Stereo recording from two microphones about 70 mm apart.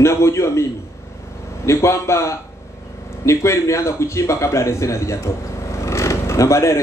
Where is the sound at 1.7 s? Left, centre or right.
Left.